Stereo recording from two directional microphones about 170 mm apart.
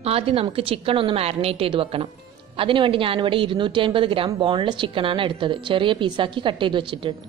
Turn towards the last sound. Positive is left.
turn(degrees=-30)  # may be behind; listen again after turning